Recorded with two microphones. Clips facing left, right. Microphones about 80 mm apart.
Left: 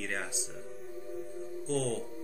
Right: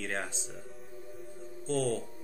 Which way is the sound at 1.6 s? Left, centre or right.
Centre.